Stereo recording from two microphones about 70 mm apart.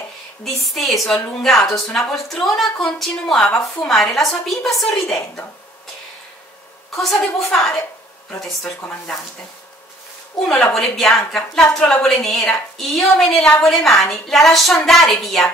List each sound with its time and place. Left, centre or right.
0.4 s a woman's voice: centre
7.0 s a woman's voice: centre
10.7 s a woman's voice: centre